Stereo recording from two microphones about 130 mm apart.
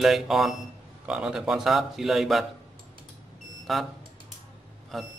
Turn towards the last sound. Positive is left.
turn(degrees=0)  # may be behind; listen again after turning